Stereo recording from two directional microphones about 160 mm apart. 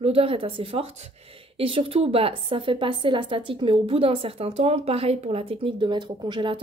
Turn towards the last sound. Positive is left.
turn(degrees=-30)  # may be behind; listen again after turning